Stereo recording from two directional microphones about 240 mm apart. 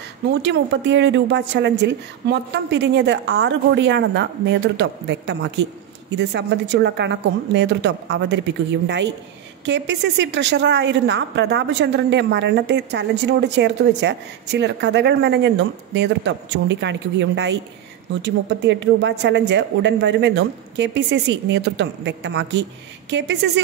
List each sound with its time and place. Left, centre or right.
0.3 s speech: right